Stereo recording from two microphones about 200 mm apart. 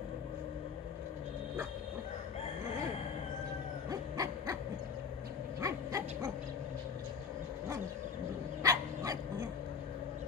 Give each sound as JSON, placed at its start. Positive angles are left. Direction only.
{"t": 3.9, "sound": "dog", "side_deg": -15}
{"t": 5.6, "sound": "dog", "side_deg": -15}
{"t": 8.6, "sound": "dog", "side_deg": -15}